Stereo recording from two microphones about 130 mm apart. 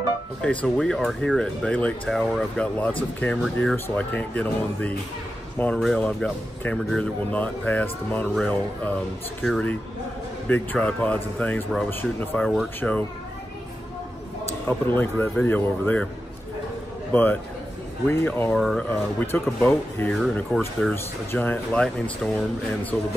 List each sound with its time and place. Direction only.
0.4 s speech: 10° left (ahead or behind)
14.7 s speech: 15° left (ahead or behind)
17.1 s speech: 15° left (ahead or behind)
18.5 s speech: 5° left (ahead or behind)
18.9 s speech: 15° left (ahead or behind)